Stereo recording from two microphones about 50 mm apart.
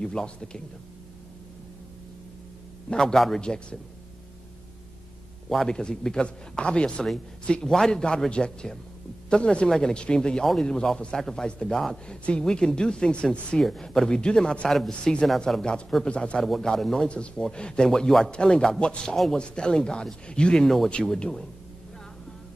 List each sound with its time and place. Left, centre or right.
0.0 s speech: centre
2.9 s speech: centre
5.7 s speech: centre
12.1 s speech: centre
13.6 s speech: centre
16.0 s speech: left
16.3 s speech: centre